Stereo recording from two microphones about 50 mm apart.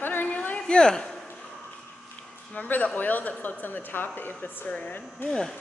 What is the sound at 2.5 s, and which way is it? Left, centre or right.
A woman's voice, left.